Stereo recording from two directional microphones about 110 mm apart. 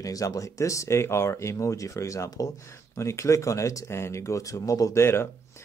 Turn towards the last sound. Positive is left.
turn(degrees=25)  # may be behind; listen again after turning